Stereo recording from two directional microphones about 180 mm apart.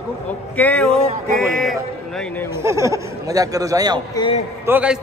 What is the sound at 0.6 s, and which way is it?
Speech, 10° left (ahead or behind).